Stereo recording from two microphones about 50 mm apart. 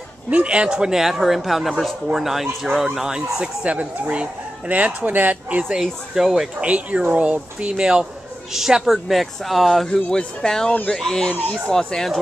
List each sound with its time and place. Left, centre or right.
0.3 s speech: right; by 2.9 s centre
3.6 s speech: right
5.8 s speech: centre
6.6 s speech: right; by 9.8 s centre
9.8 s speech: centre